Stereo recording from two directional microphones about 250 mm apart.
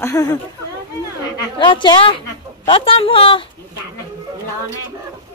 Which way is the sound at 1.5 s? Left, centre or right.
Centre.